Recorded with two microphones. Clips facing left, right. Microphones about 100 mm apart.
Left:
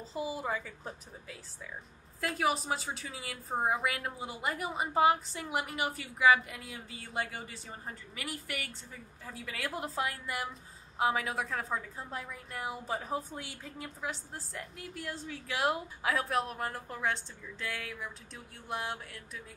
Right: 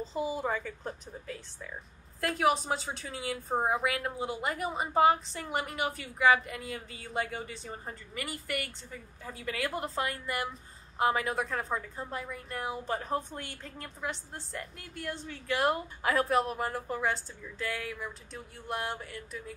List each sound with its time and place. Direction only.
0.0 s a woman's voice: 5° left (ahead or behind)